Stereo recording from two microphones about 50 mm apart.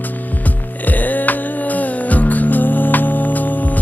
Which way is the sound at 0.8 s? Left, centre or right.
Left.